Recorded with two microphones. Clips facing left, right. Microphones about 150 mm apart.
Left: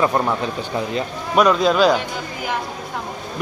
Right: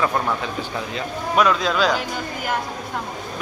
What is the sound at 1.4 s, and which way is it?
Speech, 10° left (ahead or behind).